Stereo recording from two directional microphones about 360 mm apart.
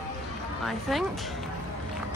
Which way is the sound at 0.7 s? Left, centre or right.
Centre.